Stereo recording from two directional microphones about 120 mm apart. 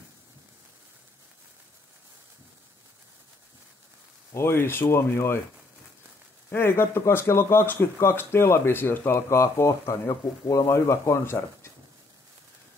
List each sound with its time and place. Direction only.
4.3 s speech: 20° left (ahead or behind)
6.5 s speech: 20° left (ahead or behind)